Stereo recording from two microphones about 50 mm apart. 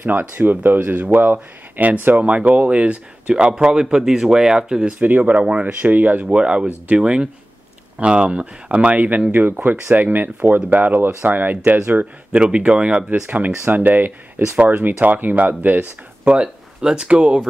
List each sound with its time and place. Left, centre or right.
0.0 s a man's voice: right; by 4.9 s centre
4.9 s a man's voice: right
5.8 s speech: right
6.2 s a man's voice: centre; by 12.1 s right
12.3 s a man's voice: centre
13.3 s speech: right
16.3 s speech: centre